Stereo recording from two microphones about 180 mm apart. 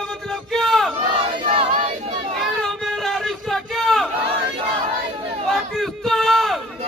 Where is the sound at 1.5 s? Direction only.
30° right (ahead or behind).